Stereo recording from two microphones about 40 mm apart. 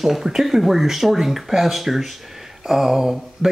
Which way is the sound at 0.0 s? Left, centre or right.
Centre.